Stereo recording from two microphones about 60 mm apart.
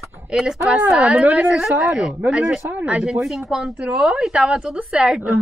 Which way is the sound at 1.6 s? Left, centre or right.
Centre.